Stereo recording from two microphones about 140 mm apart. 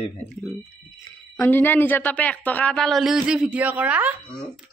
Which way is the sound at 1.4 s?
15° left (ahead or behind).